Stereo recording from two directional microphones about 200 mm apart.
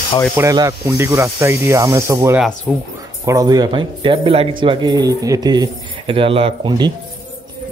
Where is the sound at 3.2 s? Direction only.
20° right (ahead or behind).